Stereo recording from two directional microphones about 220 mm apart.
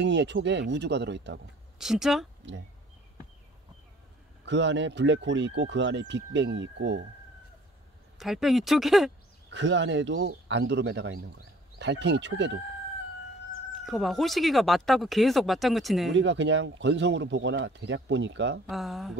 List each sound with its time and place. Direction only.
0.0 s speech: 55° right (ahead or behind)
1.8 s speech: centre (ahead or behind)
4.5 s speech: 55° right (ahead or behind)
8.2 s speech: centre (ahead or behind)
9.5 s speech: 55° right (ahead or behind)
13.8 s speech: centre (ahead or behind)
16.1 s speech: 55° right (ahead or behind)
18.7 s speech: centre (ahead or behind)